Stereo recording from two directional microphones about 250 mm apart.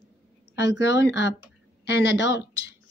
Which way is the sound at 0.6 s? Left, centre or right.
Left.